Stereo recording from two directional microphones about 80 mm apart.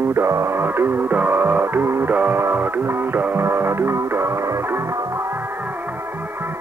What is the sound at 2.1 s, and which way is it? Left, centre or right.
Music, right.